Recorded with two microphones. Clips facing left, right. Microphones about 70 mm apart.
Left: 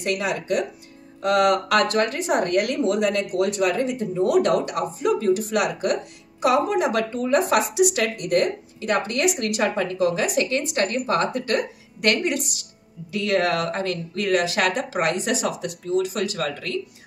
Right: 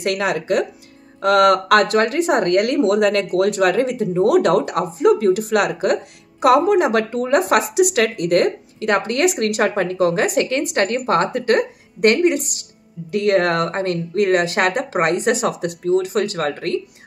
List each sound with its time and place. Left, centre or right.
0.0 s speech: right
1.2 s speech: right
1.5 s speech: right
12.0 s a woman's voice: right
13.1 s speech: right